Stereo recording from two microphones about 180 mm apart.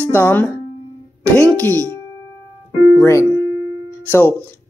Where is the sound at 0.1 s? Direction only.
10° left (ahead or behind).